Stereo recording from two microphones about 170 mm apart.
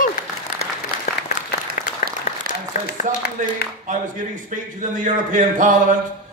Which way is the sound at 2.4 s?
70° left (ahead or behind).